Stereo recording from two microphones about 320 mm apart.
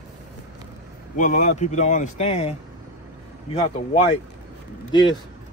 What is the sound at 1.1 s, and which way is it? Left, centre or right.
Speech, left.